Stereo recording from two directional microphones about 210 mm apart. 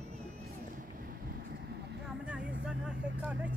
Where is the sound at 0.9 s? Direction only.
45° right (ahead or behind).